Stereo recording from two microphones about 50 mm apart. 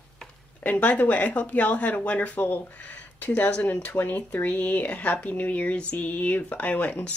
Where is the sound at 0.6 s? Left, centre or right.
Left.